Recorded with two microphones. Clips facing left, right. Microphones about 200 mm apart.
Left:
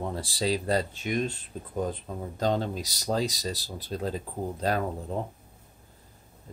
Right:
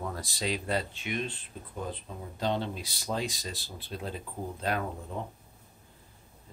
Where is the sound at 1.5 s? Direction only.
40° left (ahead or behind).